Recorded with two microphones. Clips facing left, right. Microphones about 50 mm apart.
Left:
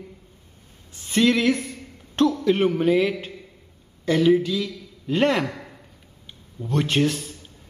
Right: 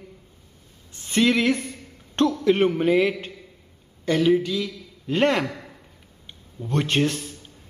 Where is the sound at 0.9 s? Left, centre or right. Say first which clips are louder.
Left 1 dB; centre.